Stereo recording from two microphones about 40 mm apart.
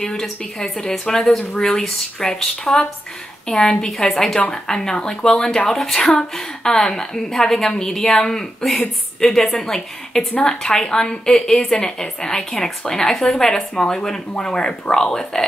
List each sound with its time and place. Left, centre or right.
0.0 s a woman's voice: centre